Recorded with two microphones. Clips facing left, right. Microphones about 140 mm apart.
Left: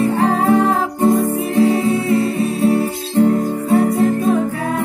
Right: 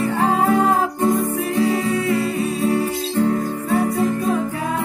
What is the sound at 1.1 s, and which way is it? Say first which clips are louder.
Music: left 4 dB; 20° left (ahead or behind).